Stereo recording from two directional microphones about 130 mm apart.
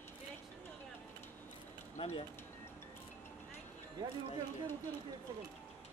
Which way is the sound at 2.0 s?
50° left (ahead or behind).